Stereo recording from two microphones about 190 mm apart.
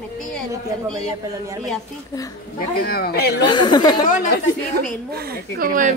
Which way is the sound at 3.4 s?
25° left (ahead or behind).